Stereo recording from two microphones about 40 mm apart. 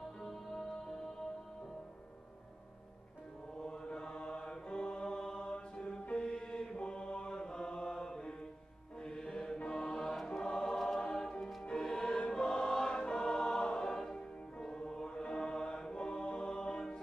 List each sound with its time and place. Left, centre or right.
0.2 s music: centre
3.5 s mantra: centre
6.8 s chant: left
9.0 s mantra: centre
9.6 s music: left
11.0 s choir: centre
11.6 s music: centre
12.3 s choir: centre
14.1 s music: left